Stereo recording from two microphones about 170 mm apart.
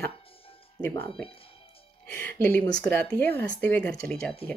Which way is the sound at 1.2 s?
35° left (ahead or behind).